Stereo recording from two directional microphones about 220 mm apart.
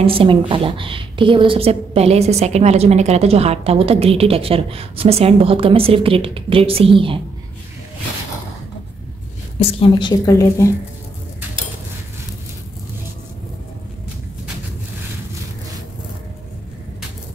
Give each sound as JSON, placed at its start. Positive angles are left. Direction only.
{"t": 0.0, "sound": "a woman's voice", "side_deg": -25}
{"t": 9.6, "sound": "a woman's voice", "side_deg": 25}